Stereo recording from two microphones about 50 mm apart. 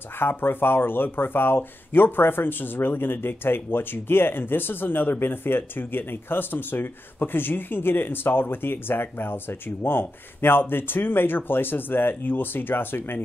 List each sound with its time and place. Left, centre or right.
0.2 s speech: left